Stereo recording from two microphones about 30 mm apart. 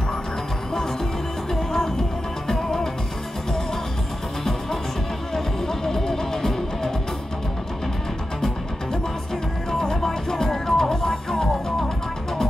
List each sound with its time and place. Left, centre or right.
1.5 s music: centre
5.3 s music: centre
9.7 s music: centre